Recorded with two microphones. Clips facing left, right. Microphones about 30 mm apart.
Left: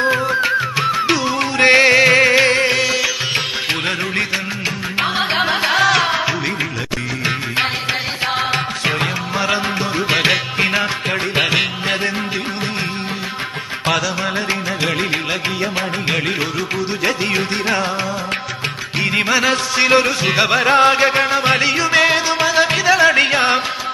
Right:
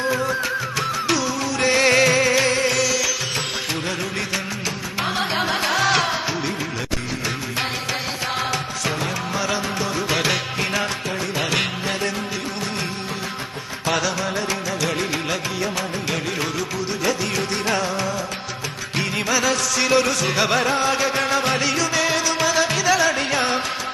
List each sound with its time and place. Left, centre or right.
0.0 s music: left
1.4 s music: left
1.8 s music: left
4.9 s music: left
8.4 s music: left
11.1 s music: left
11.5 s music: left
14.2 s music: left
19.0 s music: left